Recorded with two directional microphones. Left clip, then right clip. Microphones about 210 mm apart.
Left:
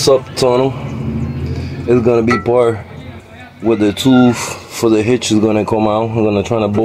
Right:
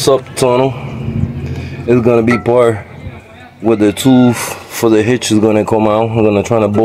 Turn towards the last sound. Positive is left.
turn(degrees=-20)  # may be behind; listen again after turning